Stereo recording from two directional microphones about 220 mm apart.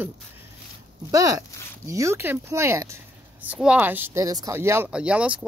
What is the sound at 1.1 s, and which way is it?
Speech, 15° right (ahead or behind).